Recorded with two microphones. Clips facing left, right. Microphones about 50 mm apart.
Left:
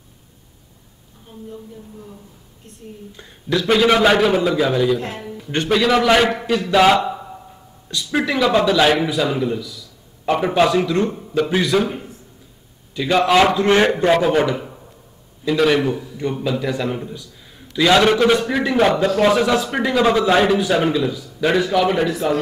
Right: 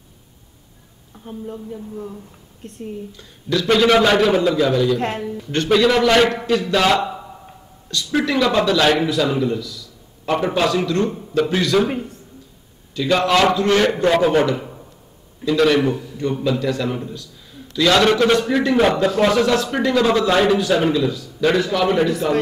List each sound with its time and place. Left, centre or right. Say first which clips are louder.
1.3 s a woman's voice: right 8 dB; right
3.1 s a man's voice: left 1 dB; left
3.5 s a man's voice: even; centre
7.9 s a man's voice: right 1 dB; centre
11.1 s a man's voice: even; centre
12.9 s a man's voice: left 2 dB; centre
13.6 s a man's voice: left 1 dB; left
14.1 s a man's voice: even; centre
15.9 s a man's voice: right 1 dB; left